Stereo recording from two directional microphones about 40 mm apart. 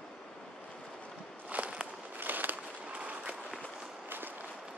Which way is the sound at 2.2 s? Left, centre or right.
Right.